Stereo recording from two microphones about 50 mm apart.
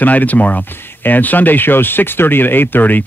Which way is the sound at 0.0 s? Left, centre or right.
Left.